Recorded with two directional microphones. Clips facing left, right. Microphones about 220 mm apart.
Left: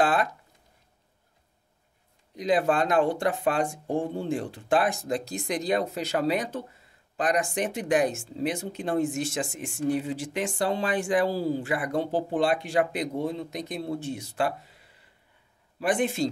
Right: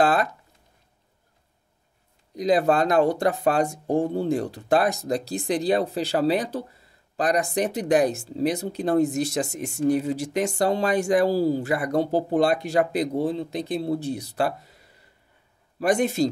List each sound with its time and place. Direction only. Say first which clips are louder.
0.0 s speech: right 3 dB; 40° right (ahead or behind)
2.3 s speech: right 4 dB; 40° right (ahead or behind)
15.8 s speech: right 4 dB; 40° right (ahead or behind)